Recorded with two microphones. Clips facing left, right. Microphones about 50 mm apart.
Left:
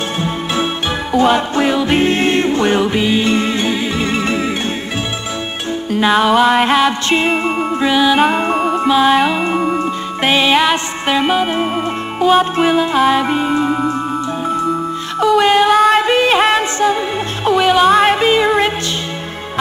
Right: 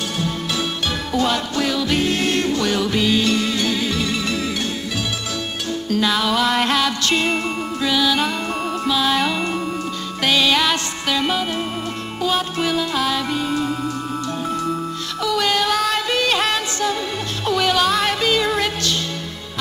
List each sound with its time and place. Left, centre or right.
1.1 s music: left
5.9 s music: left
8.5 s music: centre
8.8 s music: left
15.1 s music: left